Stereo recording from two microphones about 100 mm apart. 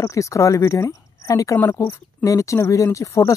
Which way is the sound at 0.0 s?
30° left (ahead or behind).